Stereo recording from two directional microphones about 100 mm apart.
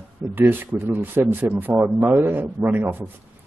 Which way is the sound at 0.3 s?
20° right (ahead or behind).